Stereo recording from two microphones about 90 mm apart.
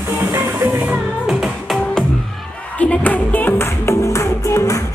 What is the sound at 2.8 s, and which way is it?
Music, 15° left (ahead or behind).